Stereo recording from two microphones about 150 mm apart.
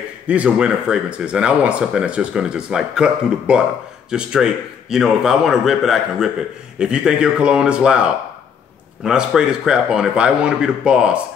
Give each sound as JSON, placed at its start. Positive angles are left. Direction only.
{"t": 0.3, "sound": "a man's voice", "side_deg": -5}